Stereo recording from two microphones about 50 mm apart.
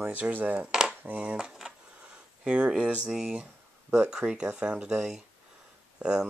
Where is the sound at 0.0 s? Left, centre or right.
Right.